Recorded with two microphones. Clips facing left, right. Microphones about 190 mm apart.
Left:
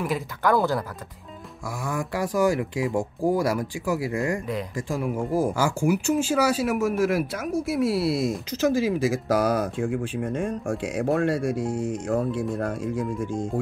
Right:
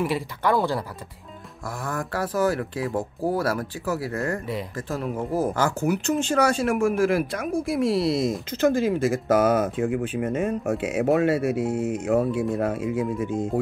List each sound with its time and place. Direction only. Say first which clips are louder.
0.0 s speech: right 1 dB; centre (ahead or behind)
1.9 s speech: left 1 dB; 15° left (ahead or behind); by 13.5 s 5° right (ahead or behind)